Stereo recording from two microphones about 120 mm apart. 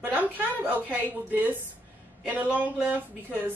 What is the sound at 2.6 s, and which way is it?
Speech, 15° right (ahead or behind).